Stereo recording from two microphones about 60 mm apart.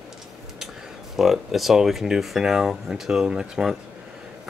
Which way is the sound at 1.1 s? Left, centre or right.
Centre.